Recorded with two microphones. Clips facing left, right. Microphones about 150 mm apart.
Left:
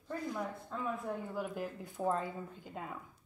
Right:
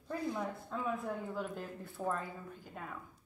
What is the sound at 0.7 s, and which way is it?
Speech, centre (ahead or behind).